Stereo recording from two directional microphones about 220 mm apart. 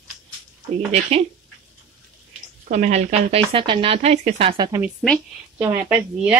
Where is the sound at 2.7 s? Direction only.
30° right (ahead or behind).